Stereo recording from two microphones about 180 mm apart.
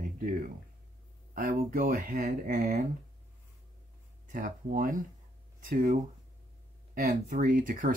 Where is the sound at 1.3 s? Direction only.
45° right (ahead or behind).